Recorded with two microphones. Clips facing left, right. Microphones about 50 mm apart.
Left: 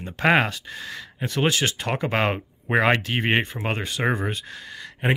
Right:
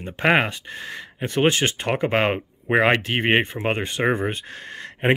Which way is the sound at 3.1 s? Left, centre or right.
Right.